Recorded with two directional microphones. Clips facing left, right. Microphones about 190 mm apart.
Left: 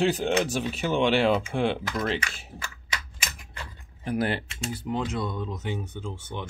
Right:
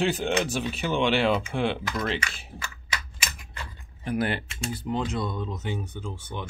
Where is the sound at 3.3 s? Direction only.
35° left (ahead or behind).